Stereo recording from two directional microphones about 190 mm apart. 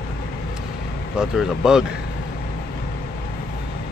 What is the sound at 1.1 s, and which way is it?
Speech, 5° right (ahead or behind).